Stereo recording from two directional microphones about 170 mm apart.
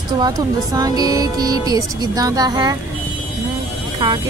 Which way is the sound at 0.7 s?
20° right (ahead or behind).